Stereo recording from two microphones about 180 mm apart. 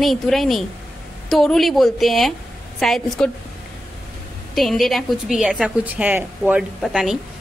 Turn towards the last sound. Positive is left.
turn(degrees=0)  # may be behind; listen again after turning